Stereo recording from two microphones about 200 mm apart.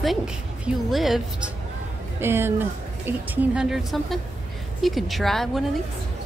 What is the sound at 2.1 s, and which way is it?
Speech, 10° right (ahead or behind).